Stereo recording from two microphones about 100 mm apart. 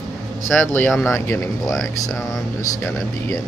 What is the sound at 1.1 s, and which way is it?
Speech, 25° left (ahead or behind).